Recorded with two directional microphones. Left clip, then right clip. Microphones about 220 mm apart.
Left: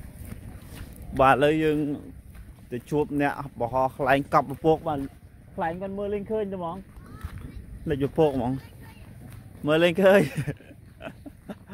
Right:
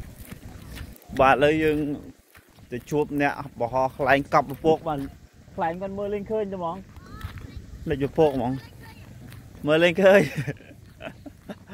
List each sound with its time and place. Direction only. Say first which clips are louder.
1.1 s speech: right 1 dB; 10° left (ahead or behind)
4.6 s speech: right 1 dB; 20° left (ahead or behind)
5.6 s speech: right 2 dB; 5° left (ahead or behind)
7.8 s speech: right 2 dB; 10° left (ahead or behind)
9.7 s a sound: right 2 dB; 10° left (ahead or behind)